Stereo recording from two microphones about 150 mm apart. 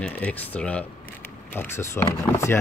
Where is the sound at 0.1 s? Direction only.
10° left (ahead or behind).